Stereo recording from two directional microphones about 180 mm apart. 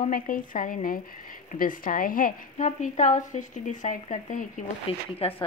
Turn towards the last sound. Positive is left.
turn(degrees=30)  # may be behind; listen again after turning